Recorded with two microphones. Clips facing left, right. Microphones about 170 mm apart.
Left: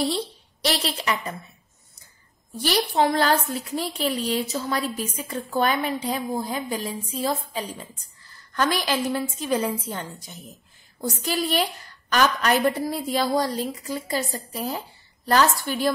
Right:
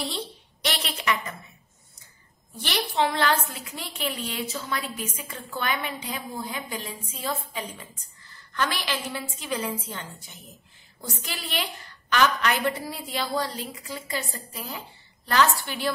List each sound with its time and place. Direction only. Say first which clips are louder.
0.0 s a woman's voice: left 7 dB; 35° left (ahead or behind)
2.6 s a woman's voice: left 4 dB; 40° left (ahead or behind)